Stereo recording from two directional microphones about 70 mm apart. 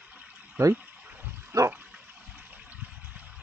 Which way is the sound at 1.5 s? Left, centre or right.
Right.